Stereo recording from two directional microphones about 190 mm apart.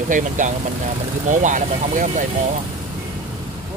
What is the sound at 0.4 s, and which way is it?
Speech, 45° right (ahead or behind).